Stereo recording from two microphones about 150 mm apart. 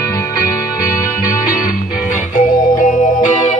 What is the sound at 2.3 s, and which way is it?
Music, 60° left (ahead or behind).